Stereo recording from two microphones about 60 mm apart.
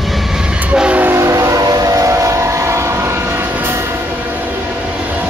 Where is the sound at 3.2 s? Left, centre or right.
Right.